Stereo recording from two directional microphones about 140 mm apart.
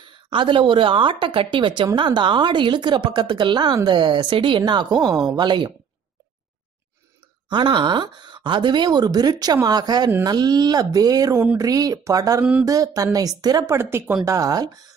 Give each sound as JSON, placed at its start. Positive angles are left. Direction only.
{"t": 0.3, "sound": "a woman's voice", "side_deg": -35}
{"t": 7.4, "sound": "a woman's voice", "side_deg": -35}
{"t": 12.4, "sound": "speech", "side_deg": -10}
{"t": 12.6, "sound": "speech", "side_deg": -25}